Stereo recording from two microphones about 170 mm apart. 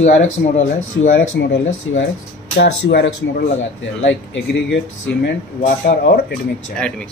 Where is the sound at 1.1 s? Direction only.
75° left (ahead or behind).